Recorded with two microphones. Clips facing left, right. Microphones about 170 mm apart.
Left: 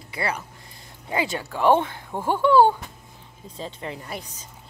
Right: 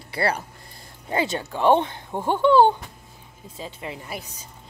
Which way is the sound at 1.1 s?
25° right (ahead or behind).